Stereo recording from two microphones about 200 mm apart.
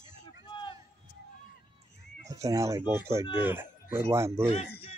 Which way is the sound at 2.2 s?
15° right (ahead or behind).